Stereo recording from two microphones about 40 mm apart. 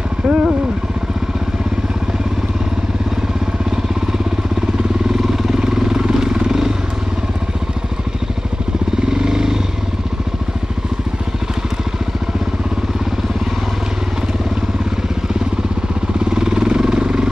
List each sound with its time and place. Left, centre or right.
0.3 s vehicle: centre
4.6 s vehicle: centre
9.0 s motorcycle: centre
16.3 s vehicle: centre